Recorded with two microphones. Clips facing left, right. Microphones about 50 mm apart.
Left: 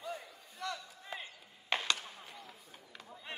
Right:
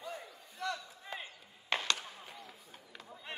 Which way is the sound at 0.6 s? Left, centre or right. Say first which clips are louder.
Right 2 dB; centre.